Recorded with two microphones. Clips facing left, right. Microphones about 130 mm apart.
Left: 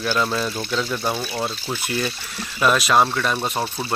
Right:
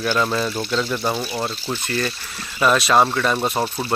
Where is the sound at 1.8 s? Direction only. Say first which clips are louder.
Even; 10° left (ahead or behind).